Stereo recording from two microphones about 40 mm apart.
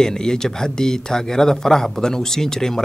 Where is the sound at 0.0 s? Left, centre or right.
Centre.